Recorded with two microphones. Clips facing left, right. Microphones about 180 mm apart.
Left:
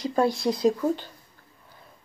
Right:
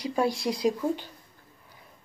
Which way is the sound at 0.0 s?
10° right (ahead or behind).